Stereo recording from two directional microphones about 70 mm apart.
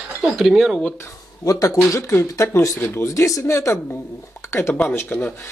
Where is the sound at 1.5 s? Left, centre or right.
Left.